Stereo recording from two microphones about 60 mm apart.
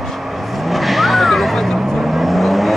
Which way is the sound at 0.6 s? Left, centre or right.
Centre.